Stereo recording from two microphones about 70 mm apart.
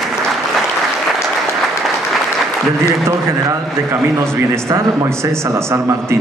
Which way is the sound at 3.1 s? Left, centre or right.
Right.